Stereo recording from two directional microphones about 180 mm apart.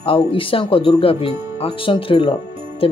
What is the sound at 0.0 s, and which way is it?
Speech, 30° left (ahead or behind).